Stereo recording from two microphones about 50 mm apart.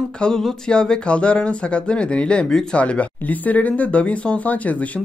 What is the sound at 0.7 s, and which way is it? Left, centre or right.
Speech, centre.